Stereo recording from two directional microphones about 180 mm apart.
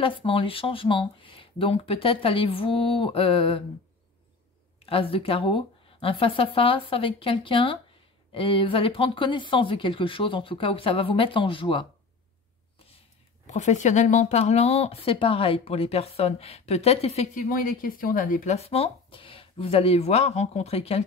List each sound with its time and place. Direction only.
0.0 s speech: 30° left (ahead or behind)
4.8 s speech: 30° left (ahead or behind)
13.5 s speech: 40° left (ahead or behind)